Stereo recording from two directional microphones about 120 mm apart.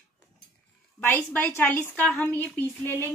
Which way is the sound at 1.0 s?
15° left (ahead or behind).